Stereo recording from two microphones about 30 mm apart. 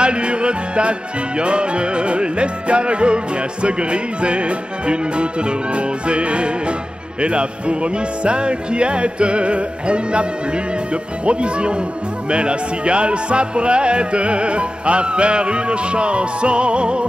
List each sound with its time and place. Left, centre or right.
0.0 s music: right